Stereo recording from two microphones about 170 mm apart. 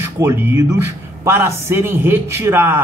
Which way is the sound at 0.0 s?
15° right (ahead or behind).